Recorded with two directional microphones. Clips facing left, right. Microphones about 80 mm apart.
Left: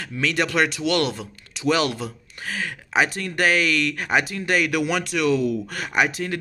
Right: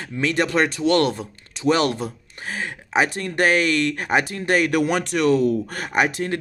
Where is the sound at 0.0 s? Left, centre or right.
Right.